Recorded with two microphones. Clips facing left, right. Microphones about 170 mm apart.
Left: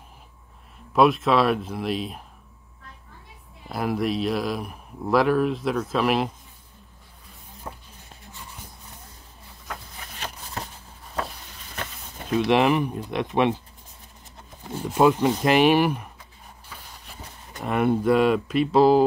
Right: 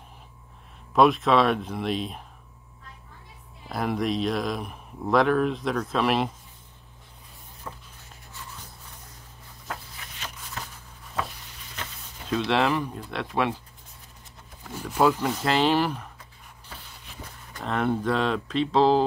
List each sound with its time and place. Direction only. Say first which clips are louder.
0.9 s speech: left 1 dB; centre (ahead or behind)
3.6 s speech: left 1 dB; 5° left (ahead or behind)
7.7 s a sound: left 2 dB; 25° left (ahead or behind)
10.2 s a sound: left 4 dB; 35° left (ahead or behind)
12.4 s speech: left 4 dB; 15° left (ahead or behind)
14.6 s speech: left 3 dB; 25° left (ahead or behind)
17.6 s speech: left 5 dB; 10° left (ahead or behind)